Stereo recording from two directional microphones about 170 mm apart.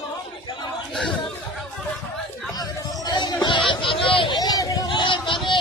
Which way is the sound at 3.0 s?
25° left (ahead or behind).